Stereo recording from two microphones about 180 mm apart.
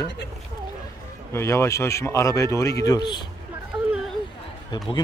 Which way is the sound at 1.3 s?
15° left (ahead or behind).